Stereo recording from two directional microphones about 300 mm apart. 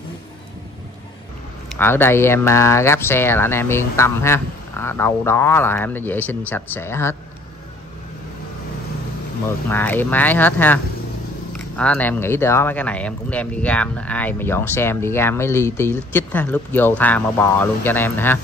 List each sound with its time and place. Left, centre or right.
1.8 s speech: centre
9.7 s speech: centre